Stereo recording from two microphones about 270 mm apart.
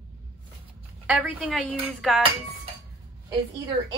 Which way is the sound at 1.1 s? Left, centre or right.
Centre.